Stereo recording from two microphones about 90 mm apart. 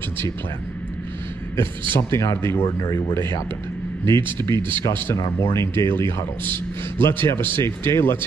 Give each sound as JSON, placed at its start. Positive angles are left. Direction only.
{"t": 1.6, "sound": "a man's voice", "side_deg": 30}
{"t": 4.2, "sound": "speech", "side_deg": -55}
{"t": 5.4, "sound": "a man's voice", "side_deg": 30}
{"t": 7.0, "sound": "a man's voice", "side_deg": 25}